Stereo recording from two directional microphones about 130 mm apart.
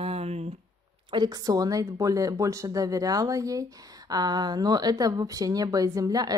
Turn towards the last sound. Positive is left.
turn(degrees=-30)  # may be behind; listen again after turning